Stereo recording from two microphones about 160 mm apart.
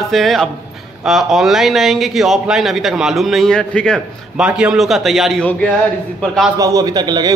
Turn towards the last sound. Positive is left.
turn(degrees=-25)  # may be behind; listen again after turning